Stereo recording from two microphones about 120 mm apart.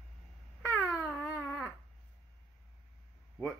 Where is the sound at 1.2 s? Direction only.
20° left (ahead or behind).